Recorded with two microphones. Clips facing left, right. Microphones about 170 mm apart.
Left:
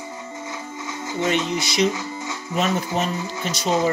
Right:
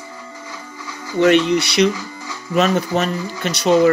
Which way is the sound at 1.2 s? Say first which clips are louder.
Right 9 dB; 70° right (ahead or behind).